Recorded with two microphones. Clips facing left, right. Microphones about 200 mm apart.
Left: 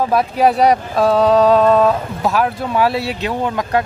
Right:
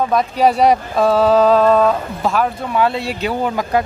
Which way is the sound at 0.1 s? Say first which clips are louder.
Left 1 dB; 5° left (ahead or behind).